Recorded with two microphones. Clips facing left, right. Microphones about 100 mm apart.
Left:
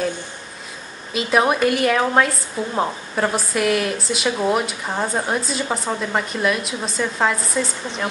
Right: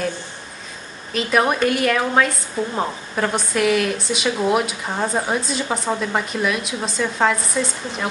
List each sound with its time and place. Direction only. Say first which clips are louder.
1.1 s speech: left 1 dB; 5° left (ahead or behind)